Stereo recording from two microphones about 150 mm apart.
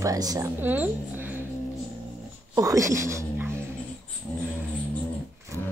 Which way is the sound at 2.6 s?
20° right (ahead or behind).